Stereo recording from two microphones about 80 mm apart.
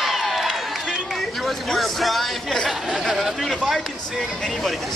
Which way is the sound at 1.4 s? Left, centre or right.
Centre.